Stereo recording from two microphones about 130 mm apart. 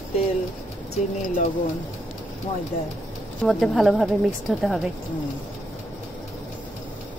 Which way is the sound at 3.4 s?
Centre (ahead or behind).